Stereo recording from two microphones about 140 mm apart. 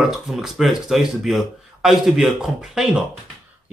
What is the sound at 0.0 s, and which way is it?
Speech, centre (ahead or behind).